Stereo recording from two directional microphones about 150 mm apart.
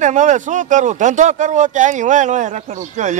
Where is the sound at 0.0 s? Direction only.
55° right (ahead or behind).